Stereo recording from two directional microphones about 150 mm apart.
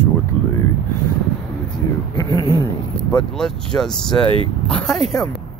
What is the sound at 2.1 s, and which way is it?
Speech, 30° left (ahead or behind).